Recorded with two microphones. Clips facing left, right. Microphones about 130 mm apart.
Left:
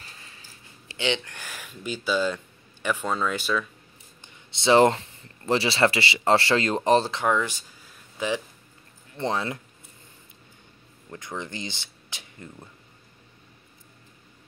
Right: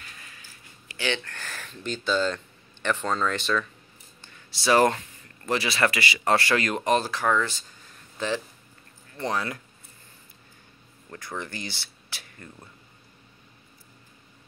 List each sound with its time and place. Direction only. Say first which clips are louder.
0.0 s a sound: even; 30° left (ahead or behind); by 3.6 s 10° left (ahead or behind)
4.2 s speech: left 3 dB; 20° left (ahead or behind)
9.1 s speech: left 1 dB; 25° left (ahead or behind)
11.1 s speech: left 1 dB; 20° left (ahead or behind)